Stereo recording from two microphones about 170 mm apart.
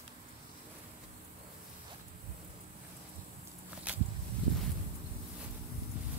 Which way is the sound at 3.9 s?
10° right (ahead or behind).